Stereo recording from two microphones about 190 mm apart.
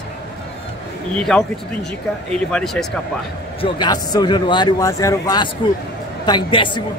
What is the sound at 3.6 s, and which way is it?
A man's voice, 20° left (ahead or behind).